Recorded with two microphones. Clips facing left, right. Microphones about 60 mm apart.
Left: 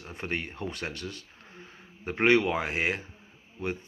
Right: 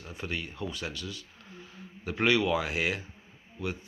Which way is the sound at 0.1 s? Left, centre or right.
Left.